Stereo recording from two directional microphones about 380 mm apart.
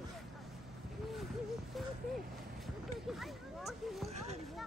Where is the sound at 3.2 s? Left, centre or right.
Centre.